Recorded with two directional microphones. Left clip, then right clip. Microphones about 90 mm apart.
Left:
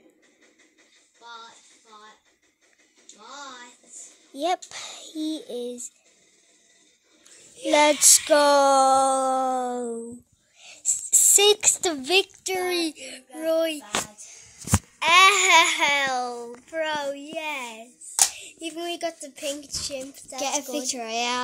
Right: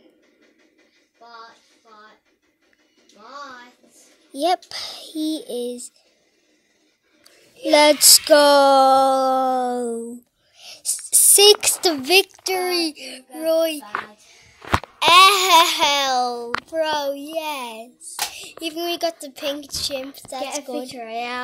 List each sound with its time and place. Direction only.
4.3 s a child's voice: 25° right (ahead or behind)
7.7 s a sound: 20° right (ahead or behind)
11.6 s a sound: 10° right (ahead or behind)
12.3 s a child's voice: 5° left (ahead or behind)
14.7 s babbling: 10° right (ahead or behind)
18.6 s a woman's voice: 5° right (ahead or behind)
20.9 s speech: 65° left (ahead or behind)